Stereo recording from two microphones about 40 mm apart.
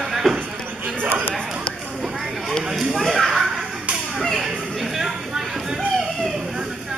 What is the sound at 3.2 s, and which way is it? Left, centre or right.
Slap, centre.